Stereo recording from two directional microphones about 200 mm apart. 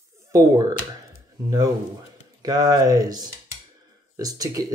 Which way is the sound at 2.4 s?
20° right (ahead or behind).